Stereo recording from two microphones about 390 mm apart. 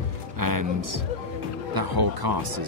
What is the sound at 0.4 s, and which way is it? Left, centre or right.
Speech, right.